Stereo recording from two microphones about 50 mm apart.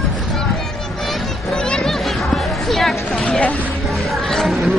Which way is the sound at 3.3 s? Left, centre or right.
Left.